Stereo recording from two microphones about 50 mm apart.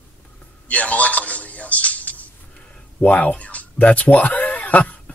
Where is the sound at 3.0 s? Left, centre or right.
Left.